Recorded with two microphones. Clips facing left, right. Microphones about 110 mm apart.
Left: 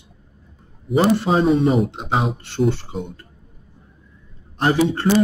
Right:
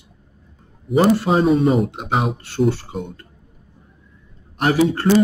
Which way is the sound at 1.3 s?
Centre (ahead or behind).